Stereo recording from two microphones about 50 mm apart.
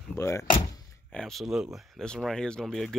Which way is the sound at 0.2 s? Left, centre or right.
Left.